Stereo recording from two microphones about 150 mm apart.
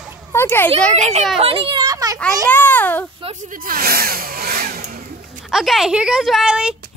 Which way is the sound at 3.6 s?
80° right.